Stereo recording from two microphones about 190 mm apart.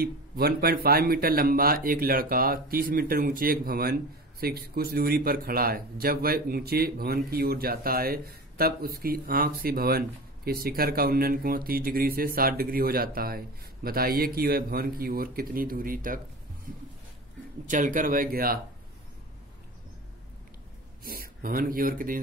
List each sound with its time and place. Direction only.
0.0 s a man's voice: 55° right (ahead or behind)
17.6 s a man's voice: 40° right (ahead or behind)
21.0 s speech: 50° right (ahead or behind)